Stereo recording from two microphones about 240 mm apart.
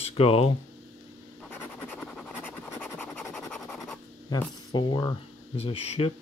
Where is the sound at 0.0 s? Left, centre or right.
Left.